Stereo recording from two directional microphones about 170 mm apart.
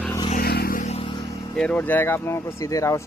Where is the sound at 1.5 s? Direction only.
5° left (ahead or behind).